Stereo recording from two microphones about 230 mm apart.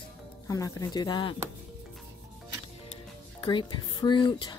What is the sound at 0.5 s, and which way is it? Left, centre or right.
Speech, centre.